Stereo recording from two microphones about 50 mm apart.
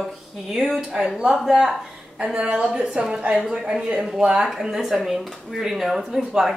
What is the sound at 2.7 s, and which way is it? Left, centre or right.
A woman's voice, centre.